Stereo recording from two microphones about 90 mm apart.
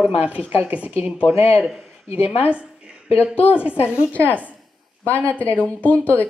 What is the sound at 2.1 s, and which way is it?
Speech, 90° left.